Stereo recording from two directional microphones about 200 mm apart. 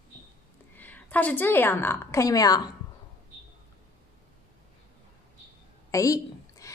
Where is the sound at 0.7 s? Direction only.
10° left (ahead or behind).